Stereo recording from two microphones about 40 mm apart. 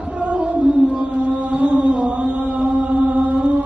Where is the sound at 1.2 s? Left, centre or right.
Right.